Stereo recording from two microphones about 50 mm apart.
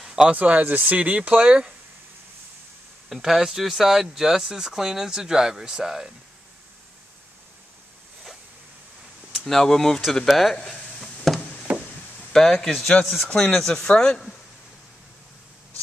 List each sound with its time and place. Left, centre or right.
0.0 s a sound: centre
0.3 s speech: right
3.1 s speech: centre
9.3 s speech: centre
10.5 s a sound: centre
11.7 s chop: right
12.3 s speech: centre
13.3 s speech: centre